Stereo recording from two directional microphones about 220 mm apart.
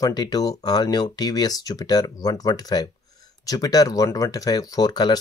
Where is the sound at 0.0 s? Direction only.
20° left (ahead or behind).